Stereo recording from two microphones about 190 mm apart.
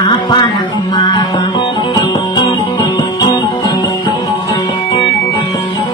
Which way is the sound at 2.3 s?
25° left (ahead or behind).